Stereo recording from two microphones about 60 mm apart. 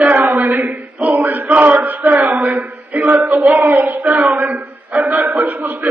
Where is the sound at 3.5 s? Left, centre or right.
Right.